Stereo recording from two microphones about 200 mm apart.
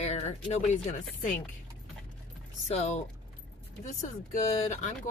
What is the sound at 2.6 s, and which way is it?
Speech, 35° left (ahead or behind).